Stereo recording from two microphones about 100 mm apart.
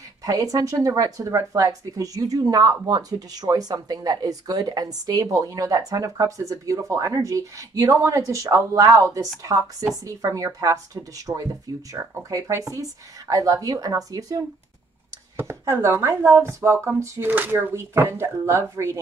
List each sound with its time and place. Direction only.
0.2 s speech: 40° right (ahead or behind)
15.3 s speech: 25° right (ahead or behind)